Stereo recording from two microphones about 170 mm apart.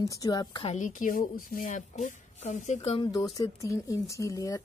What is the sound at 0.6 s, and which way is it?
Speech, 45° left (ahead or behind).